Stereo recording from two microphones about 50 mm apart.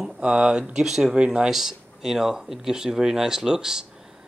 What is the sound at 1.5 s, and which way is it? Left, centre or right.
Speech, centre.